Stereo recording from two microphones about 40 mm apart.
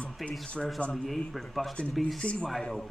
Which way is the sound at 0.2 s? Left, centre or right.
Centre.